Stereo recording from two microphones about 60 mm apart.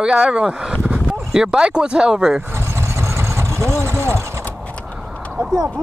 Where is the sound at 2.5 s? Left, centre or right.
Right.